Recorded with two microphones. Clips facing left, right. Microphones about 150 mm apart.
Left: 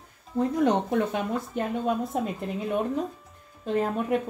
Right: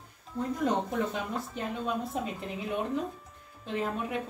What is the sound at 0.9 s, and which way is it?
Speech, 60° left (ahead or behind).